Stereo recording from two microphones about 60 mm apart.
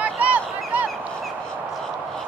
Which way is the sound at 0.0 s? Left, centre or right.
Right.